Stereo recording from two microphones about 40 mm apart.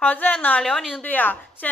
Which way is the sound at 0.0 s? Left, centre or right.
Left.